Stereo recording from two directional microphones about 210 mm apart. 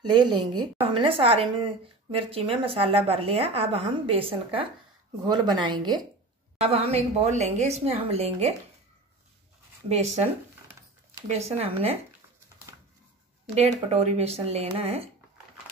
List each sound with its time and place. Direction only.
0.0 s a woman's voice: 20° right (ahead or behind)
9.8 s a woman's voice: 30° right (ahead or behind)
11.2 s speech: 30° right (ahead or behind)
13.6 s speech: 30° right (ahead or behind)